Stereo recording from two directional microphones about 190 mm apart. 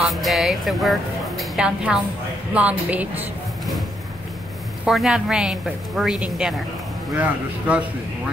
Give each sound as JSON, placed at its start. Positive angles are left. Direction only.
{"t": 0.0, "sound": "a woman's voice", "side_deg": 0}
{"t": 4.8, "sound": "a woman's voice", "side_deg": 0}